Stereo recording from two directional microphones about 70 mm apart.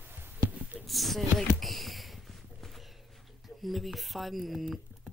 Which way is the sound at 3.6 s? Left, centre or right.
Centre.